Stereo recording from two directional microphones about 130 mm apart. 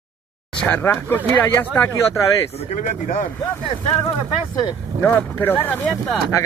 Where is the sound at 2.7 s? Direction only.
80° left.